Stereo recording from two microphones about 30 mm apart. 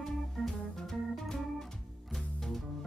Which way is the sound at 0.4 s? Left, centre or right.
Centre.